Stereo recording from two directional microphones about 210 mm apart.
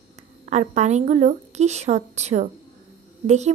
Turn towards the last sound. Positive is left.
turn(degrees=-35)  # may be behind; listen again after turning